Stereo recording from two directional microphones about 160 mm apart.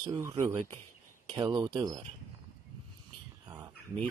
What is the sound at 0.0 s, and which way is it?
Speech, 25° right (ahead or behind).